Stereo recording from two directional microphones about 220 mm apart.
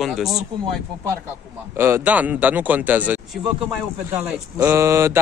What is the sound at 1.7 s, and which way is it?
Speech, 10° right (ahead or behind).